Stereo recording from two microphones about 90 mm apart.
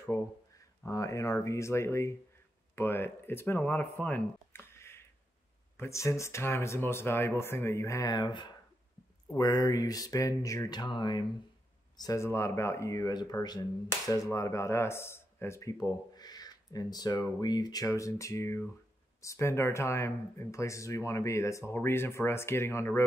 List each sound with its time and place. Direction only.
0.8 s speech: 35° left (ahead or behind); by 3.8 s 20° left (ahead or behind)
4.0 s a sound: 20° left (ahead or behind)
5.8 s speech: 35° left (ahead or behind); by 8.5 s 55° left (ahead or behind)
9.4 s speech: 45° left (ahead or behind)
10.7 s speech: 55° left (ahead or behind)
12.0 s speech: 35° left (ahead or behind)
15.8 s speech: 45° left (ahead or behind); by 23.0 s 30° left (ahead or behind)